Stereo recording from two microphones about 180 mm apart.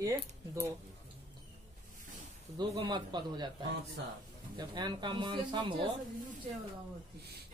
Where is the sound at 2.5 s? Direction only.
25° right (ahead or behind).